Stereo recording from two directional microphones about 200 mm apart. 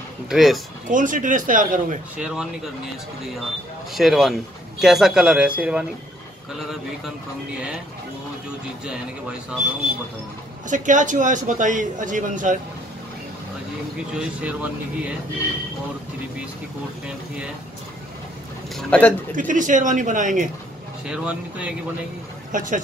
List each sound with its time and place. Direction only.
0.3 s speech: centre (ahead or behind)
0.8 s a man's voice: 40° right (ahead or behind)
2.1 s speech: 5° right (ahead or behind)
3.9 s speech: centre (ahead or behind)
10.7 s a man's voice: 40° right (ahead or behind)
14.1 s speech: 5° right (ahead or behind)
18.8 s a man's voice: 5° left (ahead or behind)
19.3 s a man's voice: 40° right (ahead or behind)
21.0 s speech: 5° right (ahead or behind)
22.5 s speech: 40° right (ahead or behind)